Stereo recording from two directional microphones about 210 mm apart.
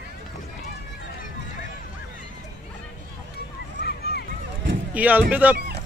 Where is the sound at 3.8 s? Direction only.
50° left (ahead or behind).